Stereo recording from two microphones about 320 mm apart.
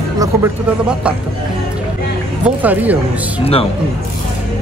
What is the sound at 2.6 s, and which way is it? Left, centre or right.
Speech, centre.